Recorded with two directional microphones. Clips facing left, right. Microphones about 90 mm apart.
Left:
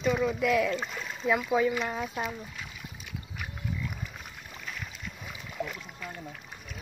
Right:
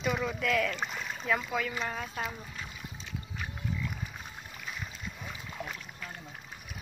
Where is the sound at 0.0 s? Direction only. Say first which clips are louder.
Left 5 dB; centre (ahead or behind).